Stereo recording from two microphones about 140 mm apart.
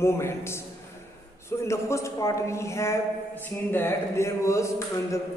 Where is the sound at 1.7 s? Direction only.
20° left (ahead or behind).